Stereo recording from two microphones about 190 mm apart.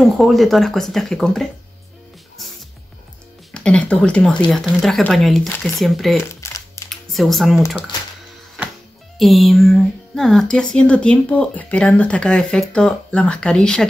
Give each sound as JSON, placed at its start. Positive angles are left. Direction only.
{"t": 0.0, "sound": "speech", "side_deg": 0}
{"t": 3.5, "sound": "speech", "side_deg": 5}
{"t": 6.4, "sound": "music", "side_deg": 15}
{"t": 6.9, "sound": "speech", "side_deg": 0}
{"t": 9.2, "sound": "speech", "side_deg": 0}